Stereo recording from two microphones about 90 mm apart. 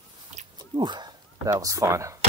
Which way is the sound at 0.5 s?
60° right (ahead or behind).